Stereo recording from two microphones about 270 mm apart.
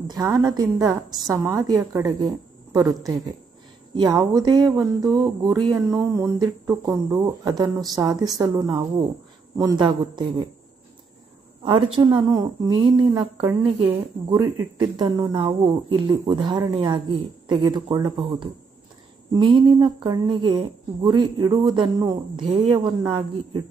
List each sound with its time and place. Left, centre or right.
0.1 s speech: centre
3.9 s speech: centre
11.6 s a woman's voice: centre